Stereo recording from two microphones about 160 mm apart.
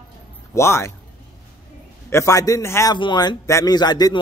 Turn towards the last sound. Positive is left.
turn(degrees=25)  # may be behind; listen again after turning